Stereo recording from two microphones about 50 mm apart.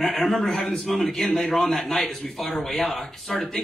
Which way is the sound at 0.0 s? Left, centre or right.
Centre.